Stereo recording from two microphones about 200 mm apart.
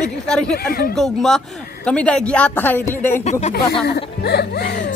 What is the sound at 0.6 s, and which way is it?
Speech, 50° left (ahead or behind).